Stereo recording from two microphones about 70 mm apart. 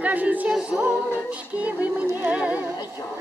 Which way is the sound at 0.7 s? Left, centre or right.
Centre.